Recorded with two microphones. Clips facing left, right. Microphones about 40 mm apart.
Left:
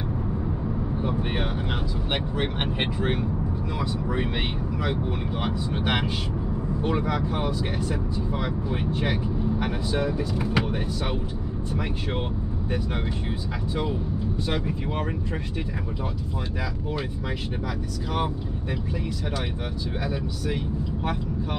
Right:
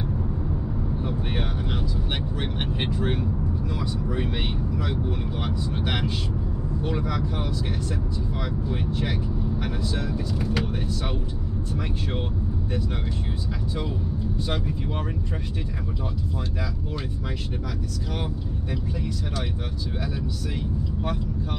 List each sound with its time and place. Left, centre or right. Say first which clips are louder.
1.0 s vehicle: left 3 dB; centre
2.3 s speech: left 2 dB; left
20.4 s speech: left 2 dB; centre